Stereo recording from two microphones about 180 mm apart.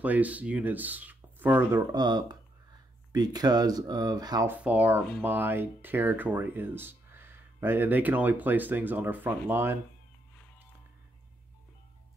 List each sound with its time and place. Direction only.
0.0 s speech: 10° right (ahead or behind)
4.6 s speech: 10° right (ahead or behind)